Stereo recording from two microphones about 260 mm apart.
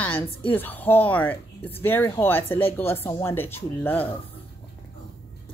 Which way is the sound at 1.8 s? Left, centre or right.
Centre.